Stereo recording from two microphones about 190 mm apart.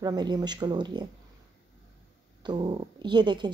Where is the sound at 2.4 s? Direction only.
25° right (ahead or behind).